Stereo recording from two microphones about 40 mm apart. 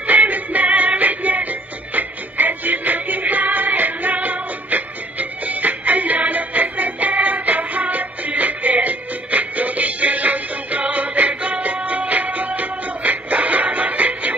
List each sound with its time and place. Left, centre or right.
0.0 s music: right